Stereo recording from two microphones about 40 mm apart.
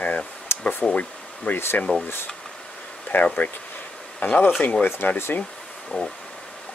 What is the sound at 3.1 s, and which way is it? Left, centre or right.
Speech, left.